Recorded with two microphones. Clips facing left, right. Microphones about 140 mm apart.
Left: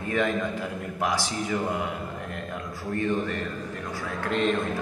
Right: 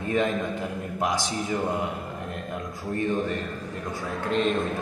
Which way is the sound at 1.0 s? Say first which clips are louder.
Even; 20° right (ahead or behind).